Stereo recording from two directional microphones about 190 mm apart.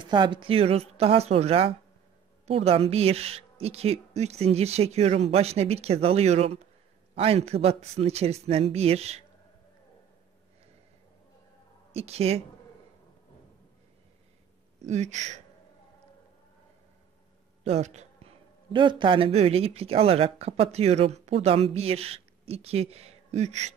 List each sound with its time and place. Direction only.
0.0 s a woman's voice: 25° right (ahead or behind)
11.9 s a woman's voice: 30° right (ahead or behind)
14.9 s a woman's voice: 35° right (ahead or behind)
17.6 s a man's voice: 35° right (ahead or behind)